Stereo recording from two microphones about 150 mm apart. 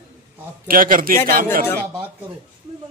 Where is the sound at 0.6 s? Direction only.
70° right (ahead or behind).